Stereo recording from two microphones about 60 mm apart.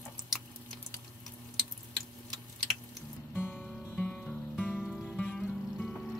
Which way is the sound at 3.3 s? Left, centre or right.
Left.